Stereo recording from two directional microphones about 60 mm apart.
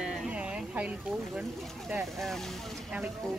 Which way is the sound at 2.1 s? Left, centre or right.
Centre.